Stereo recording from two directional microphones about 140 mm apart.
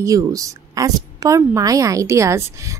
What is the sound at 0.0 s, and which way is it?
A woman's voice, 25° right (ahead or behind).